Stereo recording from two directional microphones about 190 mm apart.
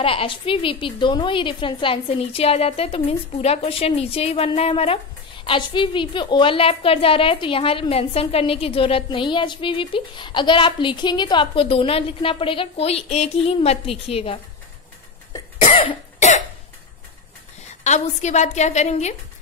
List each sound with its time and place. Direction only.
0.0 s a woman's voice: 30° left (ahead or behind)
15.6 s cough: 30° left (ahead or behind)
17.8 s a woman's voice: 35° left (ahead or behind)